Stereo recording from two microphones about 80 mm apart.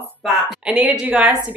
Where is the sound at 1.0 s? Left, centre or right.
Centre.